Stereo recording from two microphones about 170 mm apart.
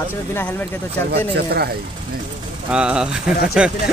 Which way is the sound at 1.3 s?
65° right (ahead or behind).